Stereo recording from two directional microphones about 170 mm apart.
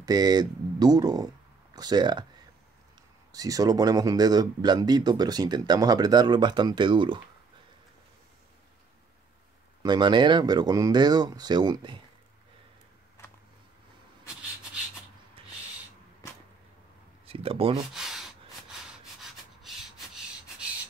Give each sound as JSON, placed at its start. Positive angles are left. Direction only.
{"t": 0.0, "sound": "speech", "side_deg": -25}
{"t": 3.3, "sound": "speech", "side_deg": -20}
{"t": 9.8, "sound": "speech", "side_deg": -25}
{"t": 15.4, "sound": "owl", "side_deg": -30}
{"t": 17.3, "sound": "speech", "side_deg": -35}
{"t": 17.9, "sound": "gasp", "side_deg": -5}